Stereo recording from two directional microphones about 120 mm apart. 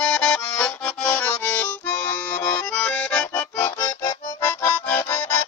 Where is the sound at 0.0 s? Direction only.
10° left (ahead or behind).